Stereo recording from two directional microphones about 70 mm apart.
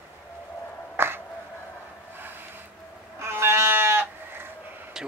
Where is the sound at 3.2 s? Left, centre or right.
Right.